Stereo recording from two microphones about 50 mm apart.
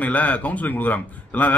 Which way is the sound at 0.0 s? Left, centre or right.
Left.